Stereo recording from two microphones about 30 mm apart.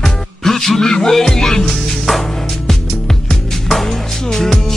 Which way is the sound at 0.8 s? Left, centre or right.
Left.